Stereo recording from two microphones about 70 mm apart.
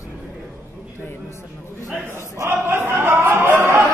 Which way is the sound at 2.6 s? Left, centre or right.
Right.